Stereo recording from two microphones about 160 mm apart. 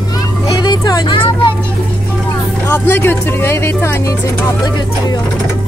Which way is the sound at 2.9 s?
15° left (ahead or behind).